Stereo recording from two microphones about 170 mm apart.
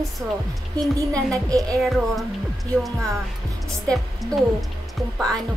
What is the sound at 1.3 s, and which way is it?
Speech, 20° right (ahead or behind).